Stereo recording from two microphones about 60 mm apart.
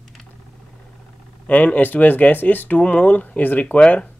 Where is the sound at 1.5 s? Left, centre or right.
Left.